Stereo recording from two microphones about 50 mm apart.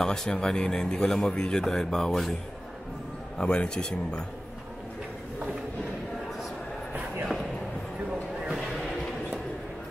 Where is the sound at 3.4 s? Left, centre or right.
Left.